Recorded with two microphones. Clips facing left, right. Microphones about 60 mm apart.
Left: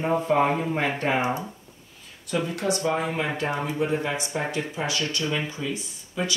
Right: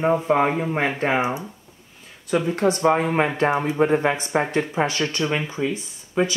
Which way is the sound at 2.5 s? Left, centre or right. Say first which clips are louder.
Right 7 dB; right.